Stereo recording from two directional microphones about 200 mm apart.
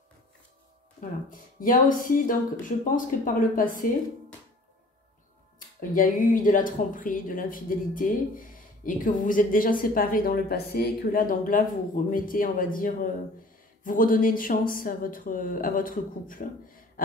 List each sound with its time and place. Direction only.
1.3 s speech: 45° left (ahead or behind)
5.8 s speech: 40° left (ahead or behind)